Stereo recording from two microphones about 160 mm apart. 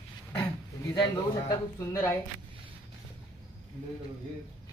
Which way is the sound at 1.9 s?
15° left (ahead or behind).